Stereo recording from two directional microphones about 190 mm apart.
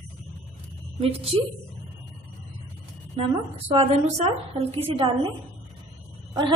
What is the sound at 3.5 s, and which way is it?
A woman's voice, 30° right (ahead or behind).